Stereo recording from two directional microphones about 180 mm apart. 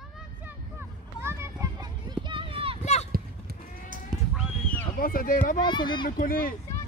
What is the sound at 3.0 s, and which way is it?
Livestock, 55° right (ahead or behind).